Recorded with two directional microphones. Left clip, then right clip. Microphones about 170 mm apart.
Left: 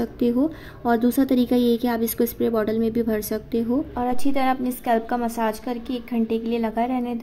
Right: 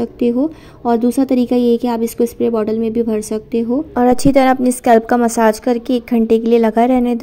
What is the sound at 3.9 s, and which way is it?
A woman's voice, 40° right (ahead or behind).